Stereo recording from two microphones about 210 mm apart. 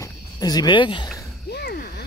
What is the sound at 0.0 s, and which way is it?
Cricket, 20° left (ahead or behind).